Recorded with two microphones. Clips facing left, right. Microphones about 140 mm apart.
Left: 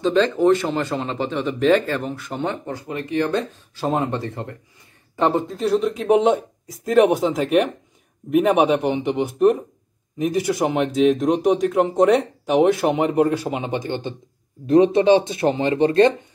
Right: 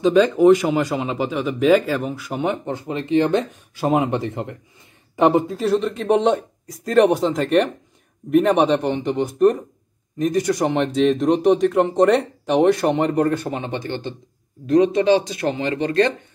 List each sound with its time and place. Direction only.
0.0 s speech: 10° right (ahead or behind)
5.6 s speech: centre (ahead or behind); by 16.1 s 25° left (ahead or behind)